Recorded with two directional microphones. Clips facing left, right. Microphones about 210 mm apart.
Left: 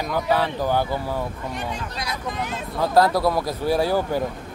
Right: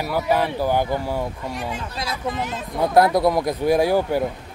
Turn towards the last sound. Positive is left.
turn(degrees=-15)  # may be behind; listen again after turning